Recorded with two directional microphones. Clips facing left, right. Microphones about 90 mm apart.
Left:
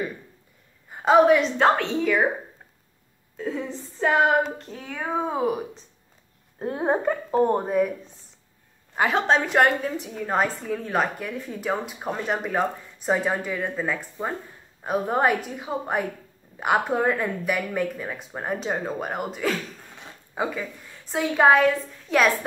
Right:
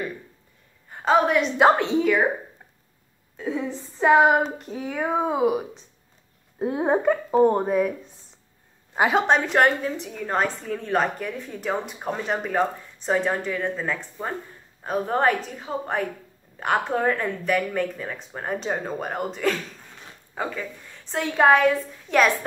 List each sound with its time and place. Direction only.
0.8 s a woman's voice: 5° left (ahead or behind)
1.6 s speech: 15° right (ahead or behind)
3.3 s speech: 5° right (ahead or behind)
6.6 s a woman's voice: 5° right (ahead or behind)
8.9 s a woman's voice: 20° right (ahead or behind)
9.3 s a woman's voice: centre (ahead or behind)